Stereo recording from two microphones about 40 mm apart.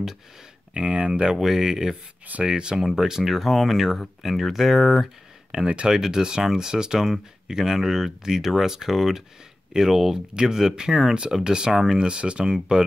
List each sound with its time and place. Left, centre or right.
0.7 s speech: right
1.3 s speech: centre
2.8 s speech: centre
5.5 s speech: centre
11.7 s speech: centre
12.0 s speech: right